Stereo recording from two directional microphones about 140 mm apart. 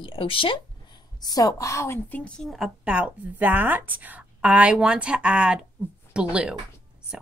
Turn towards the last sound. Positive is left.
turn(degrees=-5)  # may be behind; listen again after turning